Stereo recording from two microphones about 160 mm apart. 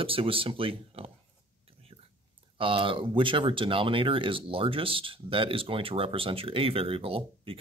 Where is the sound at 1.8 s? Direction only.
35° right (ahead or behind).